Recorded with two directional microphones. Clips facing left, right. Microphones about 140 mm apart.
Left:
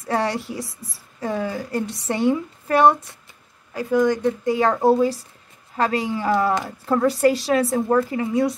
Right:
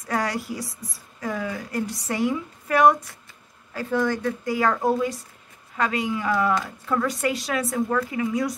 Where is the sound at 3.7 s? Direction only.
15° left (ahead or behind).